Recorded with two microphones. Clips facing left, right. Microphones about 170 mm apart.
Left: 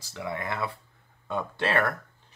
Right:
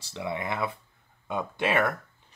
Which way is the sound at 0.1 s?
20° right (ahead or behind).